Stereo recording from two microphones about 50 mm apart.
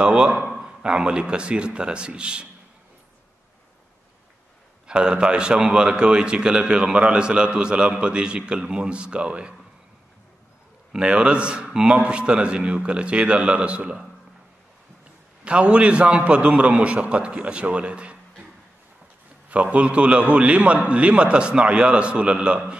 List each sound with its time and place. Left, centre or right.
0.0 s a man's voice: centre
4.8 s a man's voice: centre
10.9 s a man's voice: right
15.4 s a man's voice: right
19.5 s a man's voice: right